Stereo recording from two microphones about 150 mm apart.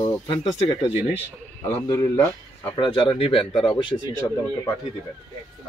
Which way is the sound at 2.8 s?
35° left (ahead or behind).